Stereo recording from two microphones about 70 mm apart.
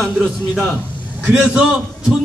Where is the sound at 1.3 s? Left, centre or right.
Centre.